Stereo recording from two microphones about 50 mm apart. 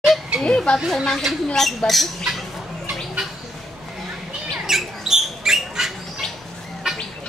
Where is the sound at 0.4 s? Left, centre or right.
Centre.